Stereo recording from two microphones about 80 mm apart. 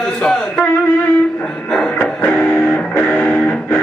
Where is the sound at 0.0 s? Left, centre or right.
Centre.